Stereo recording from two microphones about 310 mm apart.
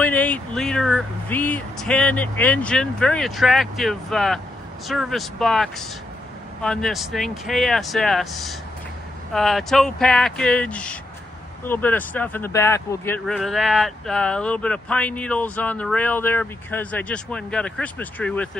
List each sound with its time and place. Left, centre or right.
0.0 s speech: centre